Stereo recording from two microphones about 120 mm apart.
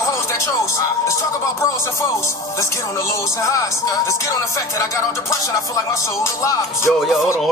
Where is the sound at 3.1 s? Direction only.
30° left (ahead or behind).